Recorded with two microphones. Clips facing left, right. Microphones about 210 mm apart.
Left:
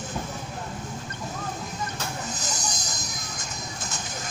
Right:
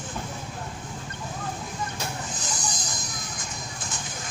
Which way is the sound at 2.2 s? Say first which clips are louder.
Left 1 dB; 40° left (ahead or behind).